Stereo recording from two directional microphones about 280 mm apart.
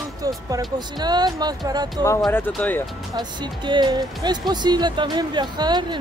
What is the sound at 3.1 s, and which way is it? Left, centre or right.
Speech, centre.